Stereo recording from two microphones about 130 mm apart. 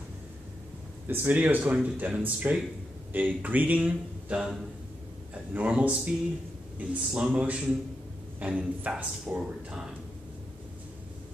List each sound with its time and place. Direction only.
1.0 s speech: 15° right (ahead or behind)